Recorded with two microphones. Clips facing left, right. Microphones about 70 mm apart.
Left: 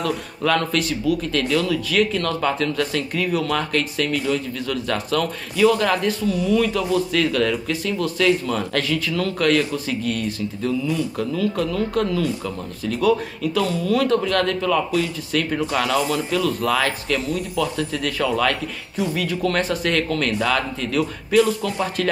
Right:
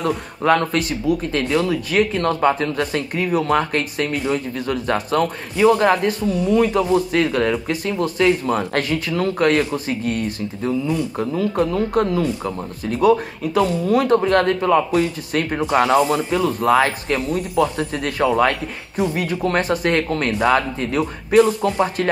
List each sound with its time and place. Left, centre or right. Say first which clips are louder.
0.4 s speech: right 3 dB; right
1.3 s a man's voice: right 1 dB; right
6.5 s speech: right 4 dB; right
6.9 s a man's voice: right 2 dB; right